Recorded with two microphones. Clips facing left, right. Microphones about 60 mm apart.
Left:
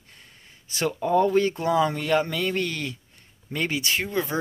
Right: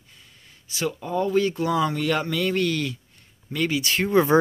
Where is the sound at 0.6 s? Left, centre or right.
Left.